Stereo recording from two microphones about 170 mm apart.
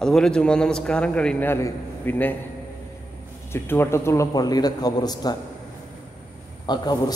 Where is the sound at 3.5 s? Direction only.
15° left (ahead or behind).